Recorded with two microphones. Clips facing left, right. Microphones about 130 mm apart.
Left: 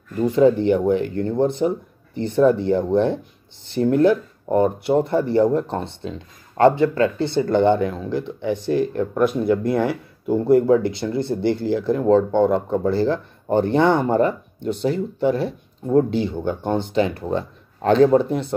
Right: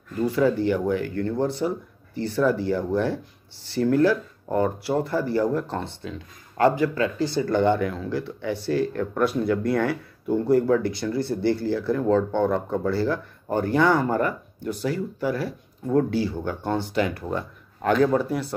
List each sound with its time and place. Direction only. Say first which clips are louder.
0.2 s speech: left 5 dB; 20° left (ahead or behind)